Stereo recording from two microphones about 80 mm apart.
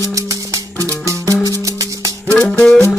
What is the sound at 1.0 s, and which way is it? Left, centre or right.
Music, right.